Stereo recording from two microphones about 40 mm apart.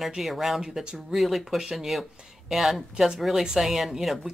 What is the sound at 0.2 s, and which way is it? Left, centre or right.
Speech, centre.